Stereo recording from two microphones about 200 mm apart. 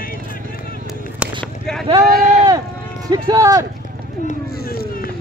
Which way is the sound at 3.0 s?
20° right (ahead or behind).